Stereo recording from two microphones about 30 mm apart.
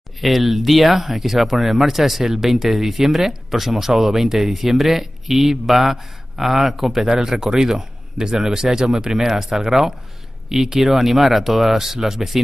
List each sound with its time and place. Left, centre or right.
0.2 s speech: centre
7.1 s speech: right